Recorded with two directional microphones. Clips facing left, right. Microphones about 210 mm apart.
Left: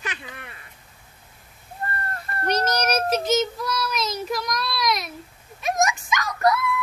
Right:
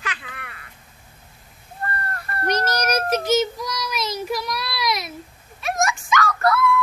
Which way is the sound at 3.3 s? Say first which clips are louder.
Right 1 dB; 10° right (ahead or behind).